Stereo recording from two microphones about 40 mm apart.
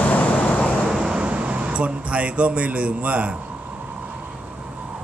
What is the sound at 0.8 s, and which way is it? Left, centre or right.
Vehicle, centre.